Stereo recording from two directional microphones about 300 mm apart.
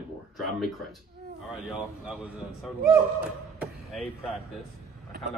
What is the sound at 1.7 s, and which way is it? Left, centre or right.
A man's voice, centre.